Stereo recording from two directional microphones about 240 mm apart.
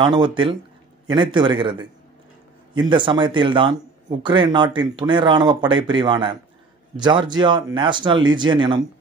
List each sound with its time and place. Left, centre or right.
0.0 s speech: centre